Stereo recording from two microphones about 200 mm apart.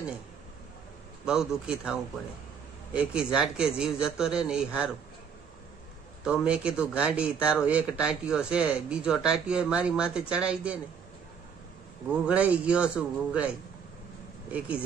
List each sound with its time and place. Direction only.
1.2 s speech: 5° right (ahead or behind)
6.2 s speech: 5° right (ahead or behind)
12.1 s speech: 5° right (ahead or behind)